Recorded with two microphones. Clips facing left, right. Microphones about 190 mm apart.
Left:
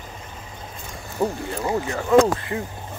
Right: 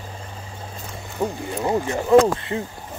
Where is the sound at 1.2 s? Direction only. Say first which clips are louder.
Left 1 dB; 5° left (ahead or behind).